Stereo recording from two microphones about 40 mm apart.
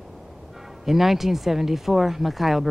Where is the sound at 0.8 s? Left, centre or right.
Centre.